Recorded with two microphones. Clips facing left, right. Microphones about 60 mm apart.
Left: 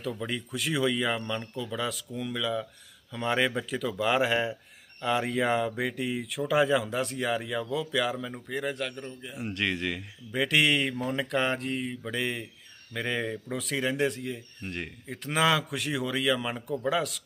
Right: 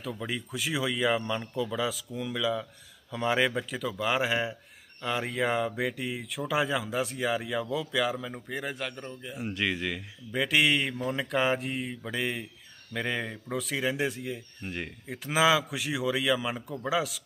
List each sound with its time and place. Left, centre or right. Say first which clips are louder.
0.0 s a man's voice: left 2 dB; centre